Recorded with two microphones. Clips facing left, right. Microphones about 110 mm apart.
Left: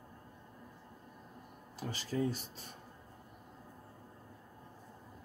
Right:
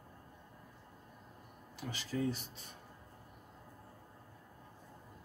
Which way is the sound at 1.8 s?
40° left (ahead or behind).